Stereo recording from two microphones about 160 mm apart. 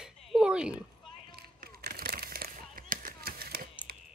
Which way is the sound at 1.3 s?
70° right (ahead or behind).